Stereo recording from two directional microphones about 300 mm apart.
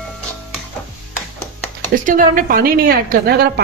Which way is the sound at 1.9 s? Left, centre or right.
Right.